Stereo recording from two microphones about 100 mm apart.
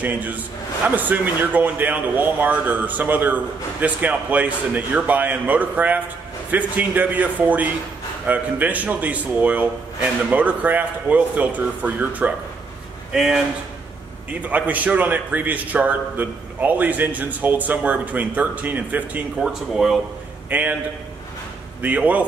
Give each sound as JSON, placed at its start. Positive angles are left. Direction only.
{"t": 0.0, "sound": "a man's voice", "side_deg": -15}
{"t": 13.1, "sound": "speech", "side_deg": -5}
{"t": 14.4, "sound": "a man's voice", "side_deg": -15}
{"t": 19.7, "sound": "speech", "side_deg": -5}
{"t": 20.4, "sound": "a man's voice", "side_deg": -15}
{"t": 21.8, "sound": "a man's voice", "side_deg": -15}